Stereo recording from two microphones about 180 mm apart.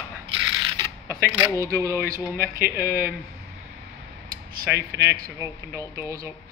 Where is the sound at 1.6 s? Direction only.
15° right (ahead or behind).